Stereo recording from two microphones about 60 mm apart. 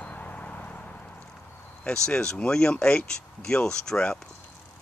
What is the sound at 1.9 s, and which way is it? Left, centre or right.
Speech, centre.